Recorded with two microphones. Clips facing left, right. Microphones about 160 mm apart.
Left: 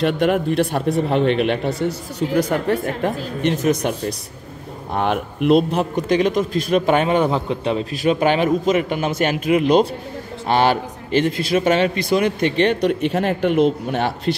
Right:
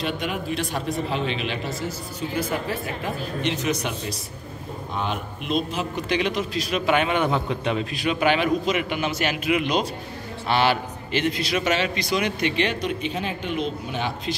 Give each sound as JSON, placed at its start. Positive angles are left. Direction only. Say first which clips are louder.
{"t": 0.0, "sound": "speech", "louder": "left 10 dB", "side_deg": 65}
{"t": 2.8, "sound": "speech", "louder": "left 7 dB", "side_deg": 50}
{"t": 4.9, "sound": "speech", "louder": "left 8 dB", "side_deg": 60}
{"t": 7.9, "sound": "a man's voice", "louder": "left 5 dB", "side_deg": 40}